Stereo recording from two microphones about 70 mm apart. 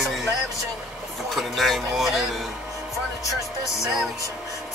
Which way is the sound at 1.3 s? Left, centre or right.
Centre.